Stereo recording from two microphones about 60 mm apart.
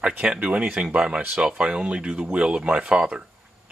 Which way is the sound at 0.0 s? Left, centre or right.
Centre.